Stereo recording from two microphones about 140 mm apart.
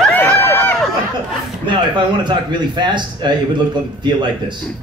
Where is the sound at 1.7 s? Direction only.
35° right (ahead or behind).